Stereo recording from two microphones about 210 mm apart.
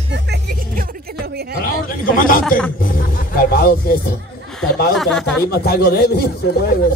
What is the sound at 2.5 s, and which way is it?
Speech, 5° left (ahead or behind).